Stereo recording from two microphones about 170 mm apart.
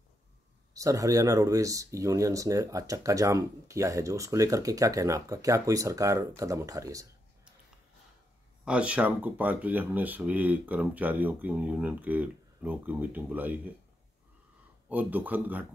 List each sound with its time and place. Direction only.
0.7 s speech: 20° right (ahead or behind)
8.6 s speech: 5° right (ahead or behind)
14.9 s speech: 10° right (ahead or behind)